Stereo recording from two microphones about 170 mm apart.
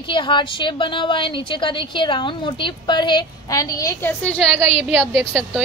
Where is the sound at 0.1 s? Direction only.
30° left (ahead or behind).